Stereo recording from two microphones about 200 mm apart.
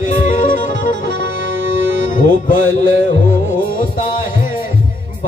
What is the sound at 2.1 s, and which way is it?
Music, 40° left (ahead or behind).